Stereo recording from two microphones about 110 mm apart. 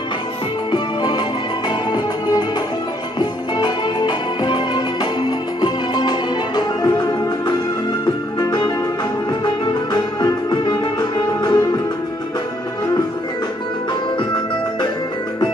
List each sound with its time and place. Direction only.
0.7 s music: 40° left (ahead or behind)
10.2 s music: 40° left (ahead or behind)